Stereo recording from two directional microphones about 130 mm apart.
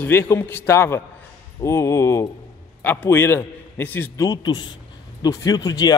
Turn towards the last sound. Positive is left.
turn(degrees=30)  # may be behind; listen again after turning